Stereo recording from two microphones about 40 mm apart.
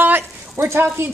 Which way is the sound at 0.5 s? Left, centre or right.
Right.